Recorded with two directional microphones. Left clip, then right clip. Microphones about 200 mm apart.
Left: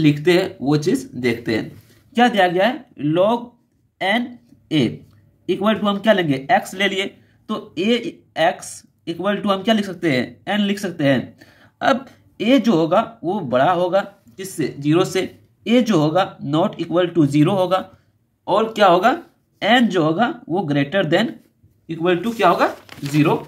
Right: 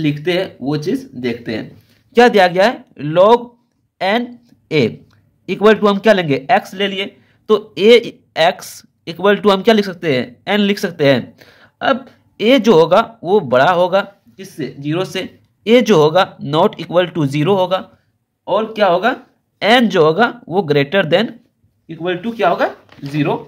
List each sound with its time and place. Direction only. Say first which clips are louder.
0.0 s speech: left 1 dB; 10° right (ahead or behind)
2.1 s speech: right 6 dB; 40° right (ahead or behind)
4.6 s speech: right 5 dB; 40° right (ahead or behind)
6.7 s speech: right 1 dB; 15° right (ahead or behind)
7.4 s speech: right 11 dB; 40° right (ahead or behind)
11.8 s speech: right 2 dB; 20° right (ahead or behind)
12.4 s speech: right 7 dB; 35° right (ahead or behind)
14.3 s speech: left 5 dB; 10° right (ahead or behind)
15.6 s speech: right 7 dB; 35° right (ahead or behind); by 17.8 s 20° right (ahead or behind)
18.4 s speech: right 1 dB; 10° right (ahead or behind)
19.6 s speech: right 5 dB; 35° right (ahead or behind)
21.8 s speech: left 2 dB; 5° right (ahead or behind)